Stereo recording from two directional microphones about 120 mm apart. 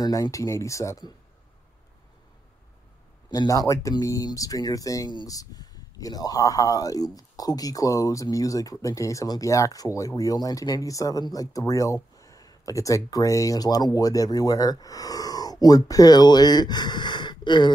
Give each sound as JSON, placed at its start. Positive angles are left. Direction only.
{"t": 0.0, "sound": "speech", "side_deg": 30}
{"t": 3.3, "sound": "speech", "side_deg": 30}